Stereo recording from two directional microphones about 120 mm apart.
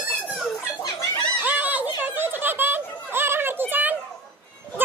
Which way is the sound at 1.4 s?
15° right (ahead or behind).